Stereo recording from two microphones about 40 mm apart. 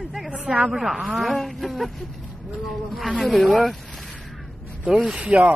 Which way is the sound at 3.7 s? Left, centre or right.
Centre.